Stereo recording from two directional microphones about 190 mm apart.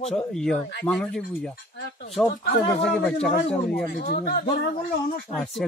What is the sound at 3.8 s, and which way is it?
Speech, 55° left (ahead or behind).